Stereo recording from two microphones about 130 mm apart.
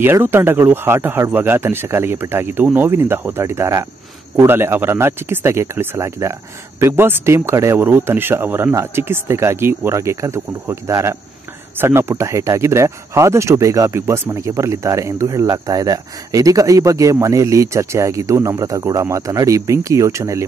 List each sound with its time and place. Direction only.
0.0 s speech: 15° right (ahead or behind)